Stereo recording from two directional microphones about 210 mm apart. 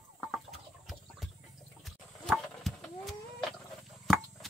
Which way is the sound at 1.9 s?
Centre (ahead or behind).